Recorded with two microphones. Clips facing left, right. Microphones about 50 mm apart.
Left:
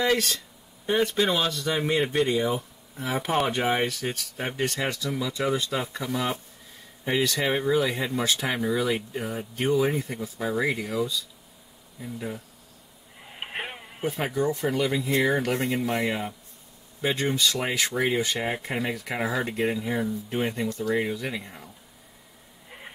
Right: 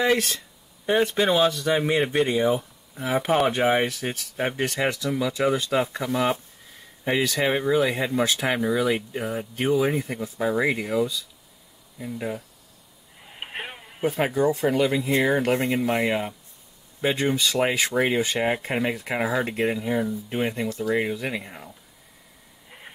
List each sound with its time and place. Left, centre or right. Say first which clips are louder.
0.0 s speech: right 2 dB; right
7.1 s speech: right 2 dB; centre
10.0 s speech: right 4 dB; right
12.2 s speech: right 4 dB; right
13.2 s a sound: left 1 dB; centre
14.1 s speech: right 4 dB; centre
15.4 s speech: right 4 dB; right
20.6 s speech: right 1 dB; centre
20.9 s speech: right 3 dB; centre
22.7 s a sound: left 1 dB; centre